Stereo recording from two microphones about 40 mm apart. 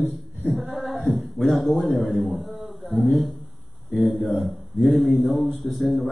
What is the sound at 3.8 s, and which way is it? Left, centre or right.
Speech, right.